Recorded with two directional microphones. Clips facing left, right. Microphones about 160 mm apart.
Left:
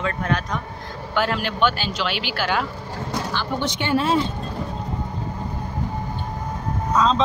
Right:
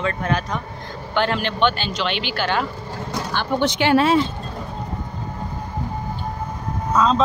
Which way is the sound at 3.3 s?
80° right.